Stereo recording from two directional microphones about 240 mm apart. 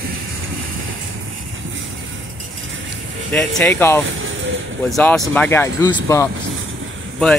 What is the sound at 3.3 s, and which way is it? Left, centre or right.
Speech, centre.